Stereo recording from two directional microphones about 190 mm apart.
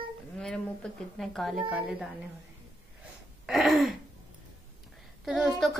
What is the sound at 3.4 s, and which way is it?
Throat clearing, centre (ahead or behind).